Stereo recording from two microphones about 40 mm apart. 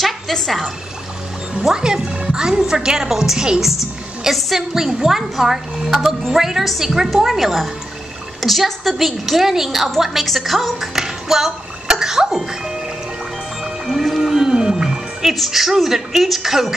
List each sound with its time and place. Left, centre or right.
1.6 s a woman's voice: centre
4.3 s a woman's voice: centre
11.0 s music: centre
12.4 s speech: centre
13.7 s music: centre
14.0 s whale vocalization: centre
15.2 s a woman's voice: centre